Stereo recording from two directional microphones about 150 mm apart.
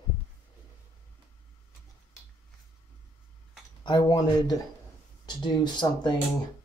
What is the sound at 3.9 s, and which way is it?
Speech, 30° left (ahead or behind).